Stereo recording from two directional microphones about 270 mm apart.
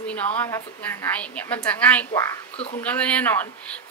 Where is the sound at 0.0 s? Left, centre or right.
Centre.